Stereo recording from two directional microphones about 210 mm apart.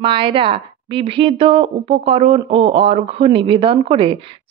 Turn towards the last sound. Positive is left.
turn(degrees=-25)  # may be behind; listen again after turning